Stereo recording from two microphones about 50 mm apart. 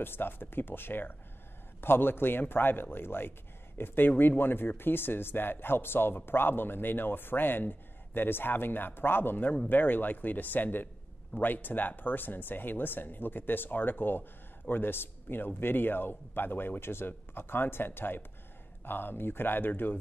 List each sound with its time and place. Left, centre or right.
0.0 s speech: left